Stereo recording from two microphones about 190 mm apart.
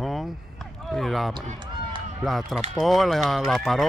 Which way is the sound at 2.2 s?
Centre (ahead or behind).